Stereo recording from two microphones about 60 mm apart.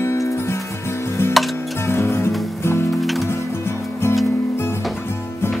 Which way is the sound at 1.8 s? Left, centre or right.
Left.